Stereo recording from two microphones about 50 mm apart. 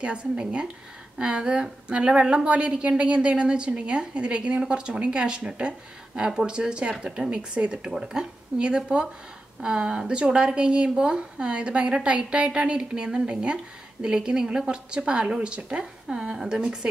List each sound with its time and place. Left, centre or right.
0.0 s a woman's voice: centre
7.9 s a woman's voice: centre